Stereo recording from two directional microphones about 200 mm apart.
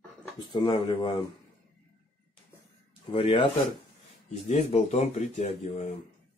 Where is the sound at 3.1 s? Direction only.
30° left (ahead or behind).